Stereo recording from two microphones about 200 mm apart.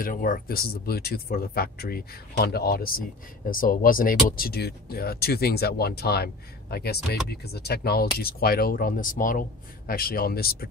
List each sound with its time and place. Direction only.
0.0 s speech: 45° left (ahead or behind)